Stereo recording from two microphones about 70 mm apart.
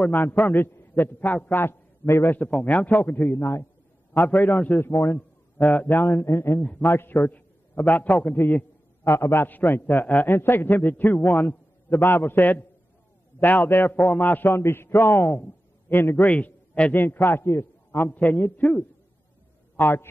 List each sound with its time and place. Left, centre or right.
0.0 s a man's voice: left
2.6 s a man's voice: left
4.9 s a man's voice: left
7.2 s a man's voice: left
9.0 s a man's voice: left
9.5 s a man's voice: left
16.3 s a man's voice: centre
16.9 s a man's voice: left
18.1 s a man's voice: left
19.8 s a man's voice: left